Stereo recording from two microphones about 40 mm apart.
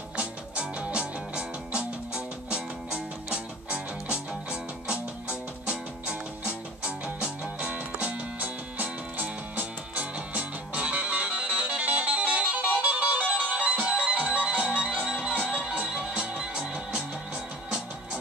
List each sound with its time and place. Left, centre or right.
0.1 s music: right
8.7 s music: right
14.9 s music: centre